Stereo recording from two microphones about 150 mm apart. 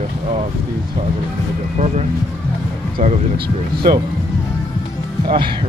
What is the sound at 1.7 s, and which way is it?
Speech, 45° right (ahead or behind).